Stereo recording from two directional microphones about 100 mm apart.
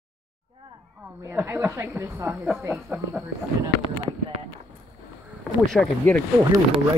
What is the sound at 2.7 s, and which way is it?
Speech, 5° right (ahead or behind).